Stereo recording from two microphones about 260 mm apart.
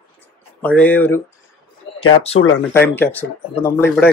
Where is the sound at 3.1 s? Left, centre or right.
Centre.